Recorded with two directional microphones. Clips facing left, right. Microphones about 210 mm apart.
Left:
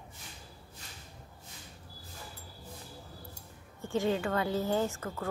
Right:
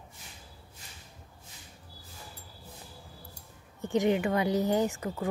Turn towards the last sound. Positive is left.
turn(degrees=-15)  # may be behind; listen again after turning